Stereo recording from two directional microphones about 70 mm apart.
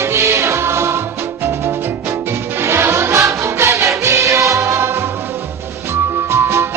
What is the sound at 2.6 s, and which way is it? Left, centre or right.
Music, right.